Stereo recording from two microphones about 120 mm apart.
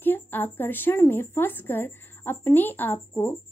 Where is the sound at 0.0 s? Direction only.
15° left (ahead or behind).